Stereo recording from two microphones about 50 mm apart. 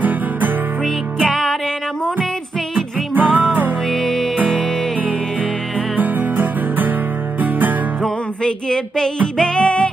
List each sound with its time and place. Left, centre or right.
1.2 s music: centre
3.2 s music: right
4.0 s music: centre
5.9 s music: right
8.0 s music: centre